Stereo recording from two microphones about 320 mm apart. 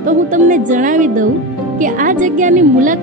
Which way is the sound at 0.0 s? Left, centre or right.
Right.